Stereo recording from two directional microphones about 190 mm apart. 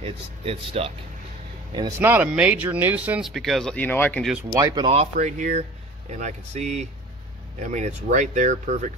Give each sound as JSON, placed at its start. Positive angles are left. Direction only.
{"t": 0.0, "sound": "speech", "side_deg": -30}
{"t": 2.0, "sound": "speech", "side_deg": -10}
{"t": 4.6, "sound": "speech", "side_deg": -20}
{"t": 4.9, "sound": "speech", "side_deg": -35}